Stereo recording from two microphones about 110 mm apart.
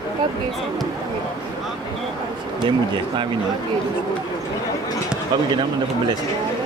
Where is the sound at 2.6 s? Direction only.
45° right (ahead or behind).